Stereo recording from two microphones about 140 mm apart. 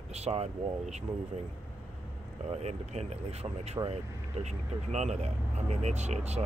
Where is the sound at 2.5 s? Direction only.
50° right (ahead or behind).